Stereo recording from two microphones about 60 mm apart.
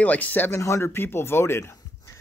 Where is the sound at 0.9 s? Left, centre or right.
Left.